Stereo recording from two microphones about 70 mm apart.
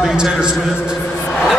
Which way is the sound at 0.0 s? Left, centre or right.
Centre.